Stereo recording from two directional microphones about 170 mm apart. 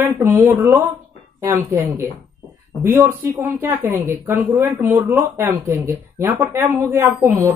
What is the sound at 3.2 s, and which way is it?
Speech, 15° right (ahead or behind).